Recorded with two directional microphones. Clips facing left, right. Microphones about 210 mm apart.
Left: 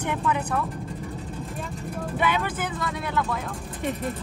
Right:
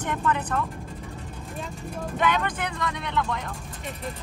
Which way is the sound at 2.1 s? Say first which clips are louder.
Right 1 dB; 10° left (ahead or behind).